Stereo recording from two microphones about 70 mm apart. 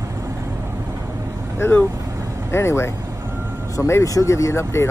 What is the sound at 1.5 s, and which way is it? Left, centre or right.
Speech, left.